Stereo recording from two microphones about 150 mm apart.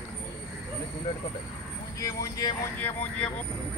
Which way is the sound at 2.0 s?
25° left (ahead or behind).